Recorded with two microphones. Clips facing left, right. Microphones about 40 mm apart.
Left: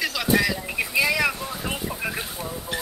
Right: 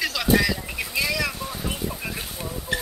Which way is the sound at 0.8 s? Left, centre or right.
Centre.